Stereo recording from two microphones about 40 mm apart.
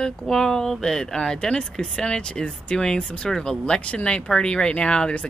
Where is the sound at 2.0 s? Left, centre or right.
Left.